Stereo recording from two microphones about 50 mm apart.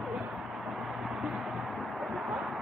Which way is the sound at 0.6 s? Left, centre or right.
Centre.